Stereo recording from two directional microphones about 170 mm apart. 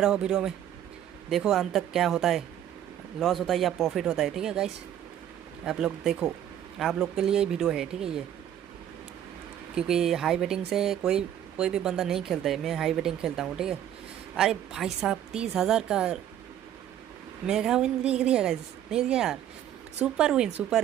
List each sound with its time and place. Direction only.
0.0 s speech: 5° right (ahead or behind)
5.7 s speech: 5° right (ahead or behind)
9.8 s speech: 5° right (ahead or behind)
17.5 s speech: 5° right (ahead or behind)